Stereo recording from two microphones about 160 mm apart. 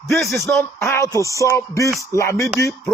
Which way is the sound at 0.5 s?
Centre (ahead or behind).